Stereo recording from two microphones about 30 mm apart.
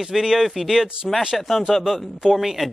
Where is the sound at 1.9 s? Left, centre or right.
Centre.